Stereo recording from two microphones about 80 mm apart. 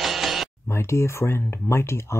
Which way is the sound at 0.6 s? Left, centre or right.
Left.